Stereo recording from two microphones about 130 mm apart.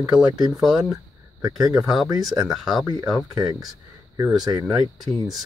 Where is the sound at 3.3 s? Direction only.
30° right (ahead or behind).